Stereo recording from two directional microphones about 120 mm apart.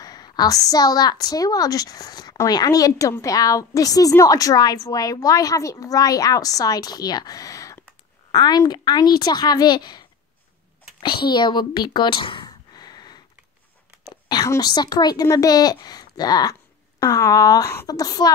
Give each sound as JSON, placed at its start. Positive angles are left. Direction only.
{"t": 0.0, "sound": "a woman's voice", "side_deg": 35}
{"t": 14.3, "sound": "a woman's voice", "side_deg": 30}